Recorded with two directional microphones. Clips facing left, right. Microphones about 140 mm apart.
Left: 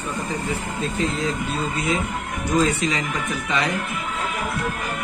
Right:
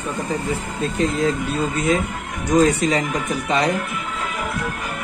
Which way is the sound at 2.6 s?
40° right (ahead or behind).